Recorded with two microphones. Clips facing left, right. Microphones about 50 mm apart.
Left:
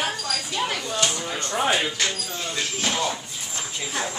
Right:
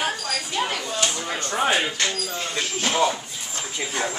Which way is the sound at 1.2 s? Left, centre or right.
Right.